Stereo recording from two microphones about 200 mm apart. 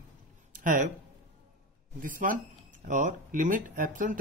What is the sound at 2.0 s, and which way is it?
Speech, 40° right (ahead or behind).